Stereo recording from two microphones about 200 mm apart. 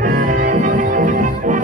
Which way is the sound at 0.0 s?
40° right (ahead or behind).